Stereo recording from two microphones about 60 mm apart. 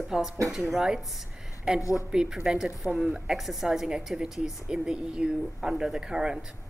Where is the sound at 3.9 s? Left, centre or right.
Centre.